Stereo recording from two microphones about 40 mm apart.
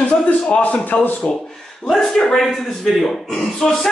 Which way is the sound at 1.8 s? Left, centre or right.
Centre.